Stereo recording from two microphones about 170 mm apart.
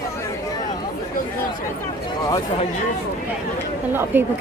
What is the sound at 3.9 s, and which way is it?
Speech, 10° right (ahead or behind).